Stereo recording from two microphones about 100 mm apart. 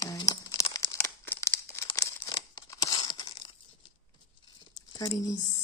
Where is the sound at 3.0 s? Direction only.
50° left (ahead or behind).